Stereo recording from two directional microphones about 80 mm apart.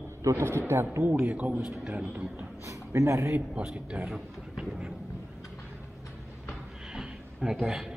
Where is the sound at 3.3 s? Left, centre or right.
Centre.